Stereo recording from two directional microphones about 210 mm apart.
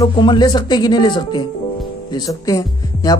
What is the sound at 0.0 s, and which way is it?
Speech, 20° left (ahead or behind).